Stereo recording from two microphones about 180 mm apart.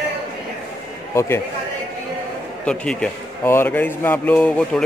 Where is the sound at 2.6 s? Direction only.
5° left (ahead or behind).